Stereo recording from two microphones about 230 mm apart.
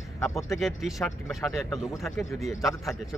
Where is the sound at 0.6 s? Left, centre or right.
Centre.